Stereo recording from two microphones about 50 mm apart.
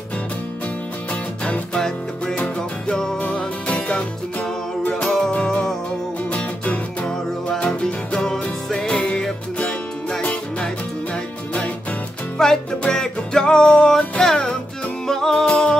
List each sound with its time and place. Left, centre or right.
1.4 s music: centre
5.0 s music: centre
6.3 s music: left
7.8 s music: centre
12.4 s music: centre